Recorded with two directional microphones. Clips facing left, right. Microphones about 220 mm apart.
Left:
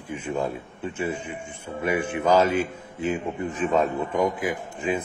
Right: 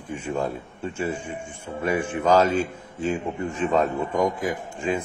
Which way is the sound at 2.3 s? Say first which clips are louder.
Right 1 dB; 20° left (ahead or behind).